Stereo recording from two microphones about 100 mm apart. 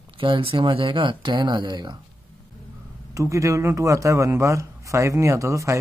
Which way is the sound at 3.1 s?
30° right (ahead or behind).